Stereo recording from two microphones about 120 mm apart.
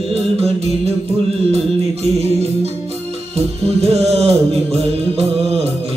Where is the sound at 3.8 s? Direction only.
55° right (ahead or behind).